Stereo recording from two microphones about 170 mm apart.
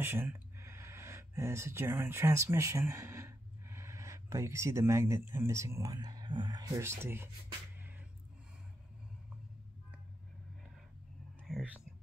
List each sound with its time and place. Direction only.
0.0 s speech: 10° right (ahead or behind)
11.3 s whispering: centre (ahead or behind)